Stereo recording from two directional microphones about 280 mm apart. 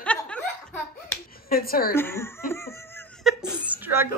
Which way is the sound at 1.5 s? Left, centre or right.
Left.